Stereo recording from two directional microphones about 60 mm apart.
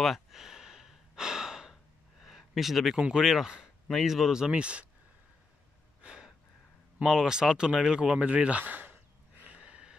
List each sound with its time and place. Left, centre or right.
0.0 s gasp: centre
2.2 s a sound: centre
3.0 s speech: centre
6.0 s gasp: centre
7.0 s speech: centre; by 8.9 s right
9.4 s gasp: right